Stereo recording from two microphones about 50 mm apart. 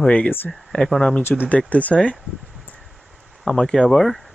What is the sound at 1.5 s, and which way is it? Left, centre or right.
Speech, left.